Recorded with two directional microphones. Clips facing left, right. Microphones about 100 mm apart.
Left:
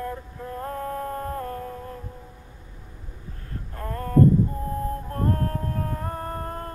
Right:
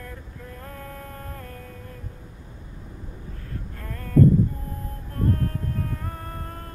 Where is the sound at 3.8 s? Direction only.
35° left (ahead or behind).